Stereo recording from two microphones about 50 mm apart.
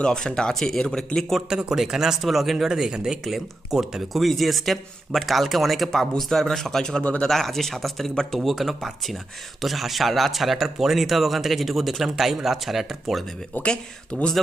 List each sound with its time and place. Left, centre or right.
0.0 s speech: centre
1.5 s speech: centre
2.2 s speech: centre
7.0 s speech: left
7.2 s speech: centre
8.4 s speech: centre
13.6 s speech: centre